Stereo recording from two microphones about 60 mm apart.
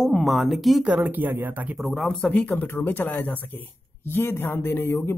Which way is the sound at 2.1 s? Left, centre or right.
Left.